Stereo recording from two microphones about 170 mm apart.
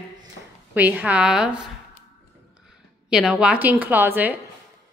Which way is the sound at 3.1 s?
5° right (ahead or behind).